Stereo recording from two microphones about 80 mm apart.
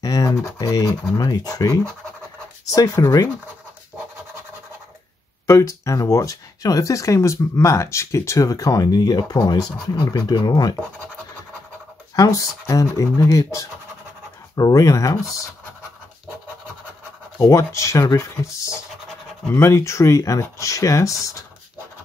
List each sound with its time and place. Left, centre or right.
0.0 s scratch: left
0.6 s speech: left
5.5 s speech: left
12.2 s speech: left
17.4 s speech: left